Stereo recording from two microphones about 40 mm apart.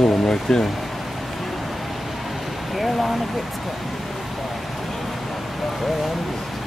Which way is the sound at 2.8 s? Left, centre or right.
Centre.